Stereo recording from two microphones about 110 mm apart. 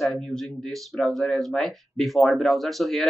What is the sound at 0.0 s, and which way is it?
Speech, centre (ahead or behind).